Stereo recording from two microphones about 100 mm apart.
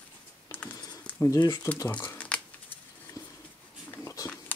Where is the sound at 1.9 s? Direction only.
15° left (ahead or behind).